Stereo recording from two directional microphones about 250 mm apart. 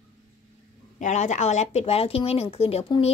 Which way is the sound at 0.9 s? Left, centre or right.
Left.